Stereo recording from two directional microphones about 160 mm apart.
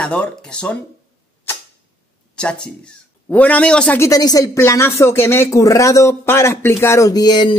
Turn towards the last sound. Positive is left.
turn(degrees=25)  # may be behind; listen again after turning